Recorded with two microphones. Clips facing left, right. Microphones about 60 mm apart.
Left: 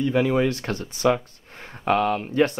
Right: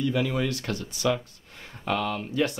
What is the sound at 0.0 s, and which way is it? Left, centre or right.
Speech, left.